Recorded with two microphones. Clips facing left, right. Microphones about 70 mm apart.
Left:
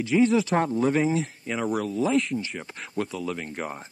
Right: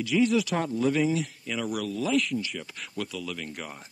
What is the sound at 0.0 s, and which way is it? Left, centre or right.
Speech, left.